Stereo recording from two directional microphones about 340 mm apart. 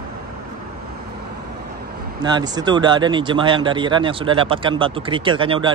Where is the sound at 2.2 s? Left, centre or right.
Centre.